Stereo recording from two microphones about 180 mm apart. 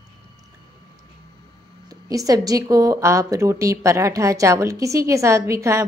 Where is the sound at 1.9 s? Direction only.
20° right (ahead or behind).